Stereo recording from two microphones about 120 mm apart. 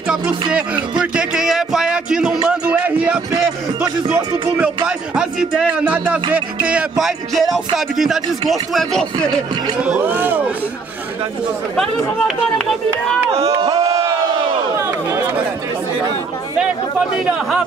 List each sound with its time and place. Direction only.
0.1 s music: 10° right (ahead or behind)
4.8 s speech: 5° right (ahead or behind)
7.3 s music: centre (ahead or behind)
9.8 s speech: 15° right (ahead or behind)
12.5 s music: 5° left (ahead or behind)
13.3 s speech: 55° right (ahead or behind)
13.7 s a sound: 30° right (ahead or behind)
17.3 s speech: 10° right (ahead or behind)